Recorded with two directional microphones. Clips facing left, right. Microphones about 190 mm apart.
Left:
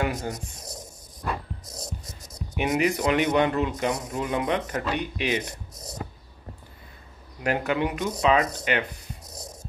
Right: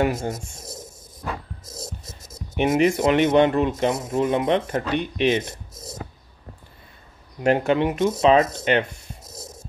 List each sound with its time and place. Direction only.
0.0 s speech: 25° right (ahead or behind)
2.0 s speech: 25° right (ahead or behind)
7.4 s speech: 25° right (ahead or behind)